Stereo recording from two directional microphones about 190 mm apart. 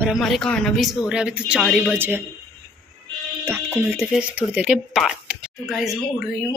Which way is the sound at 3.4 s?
10° right (ahead or behind).